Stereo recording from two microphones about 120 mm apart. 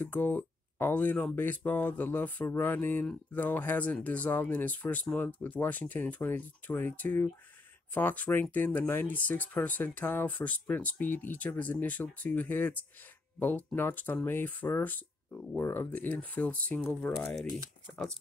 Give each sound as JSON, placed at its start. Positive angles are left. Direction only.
{"t": 0.0, "sound": "speech", "side_deg": 15}